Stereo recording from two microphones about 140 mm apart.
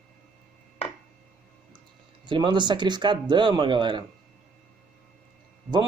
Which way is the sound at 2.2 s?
35° right (ahead or behind).